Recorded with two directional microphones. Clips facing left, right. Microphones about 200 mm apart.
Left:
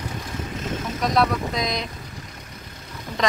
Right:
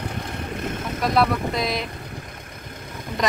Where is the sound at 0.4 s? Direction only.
60° right (ahead or behind).